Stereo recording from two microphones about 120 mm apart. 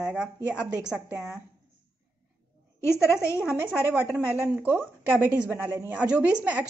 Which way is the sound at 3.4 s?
10° right (ahead or behind).